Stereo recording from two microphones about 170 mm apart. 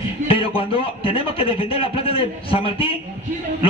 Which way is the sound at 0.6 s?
35° left (ahead or behind).